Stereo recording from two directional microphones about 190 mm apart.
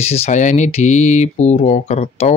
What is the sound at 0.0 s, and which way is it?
Speech, 35° left (ahead or behind).